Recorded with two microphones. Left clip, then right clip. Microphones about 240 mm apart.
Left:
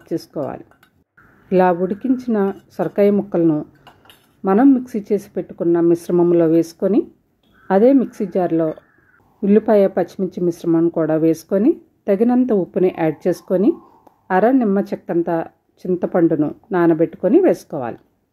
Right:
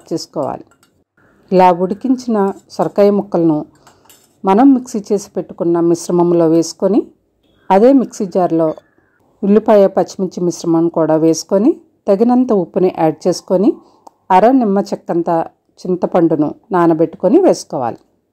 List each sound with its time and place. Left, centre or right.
0.0 s speech: centre